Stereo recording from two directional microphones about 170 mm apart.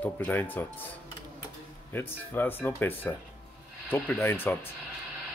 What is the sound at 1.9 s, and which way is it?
Speech, 10° left (ahead or behind).